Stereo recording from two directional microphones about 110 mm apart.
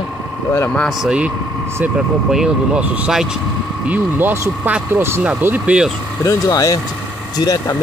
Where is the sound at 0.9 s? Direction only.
5° right (ahead or behind).